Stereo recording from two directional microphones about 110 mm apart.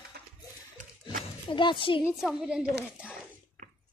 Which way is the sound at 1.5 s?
50° left (ahead or behind).